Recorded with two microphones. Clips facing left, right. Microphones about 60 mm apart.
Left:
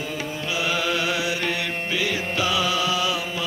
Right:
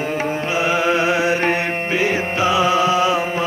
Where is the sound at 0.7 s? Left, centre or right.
Right.